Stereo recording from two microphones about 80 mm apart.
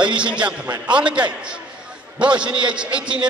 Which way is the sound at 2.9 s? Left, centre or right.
Right.